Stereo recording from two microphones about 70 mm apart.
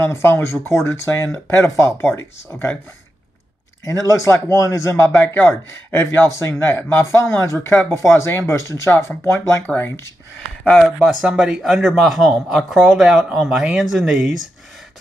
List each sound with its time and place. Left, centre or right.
0.0 s speech: left
3.8 s speech: left
10.6 s speech: centre
11.1 s speech: centre